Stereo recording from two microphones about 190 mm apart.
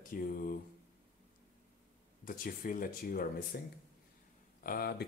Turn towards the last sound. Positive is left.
turn(degrees=50)  # may be behind; listen again after turning